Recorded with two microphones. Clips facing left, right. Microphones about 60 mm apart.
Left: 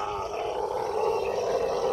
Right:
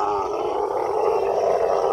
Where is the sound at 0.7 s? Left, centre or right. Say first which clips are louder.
Right 5 dB; right.